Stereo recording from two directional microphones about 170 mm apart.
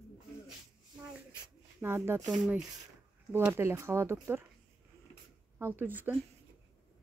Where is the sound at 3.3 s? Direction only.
15° right (ahead or behind).